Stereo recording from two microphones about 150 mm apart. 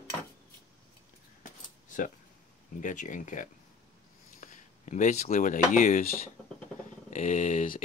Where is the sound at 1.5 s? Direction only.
60° left (ahead or behind).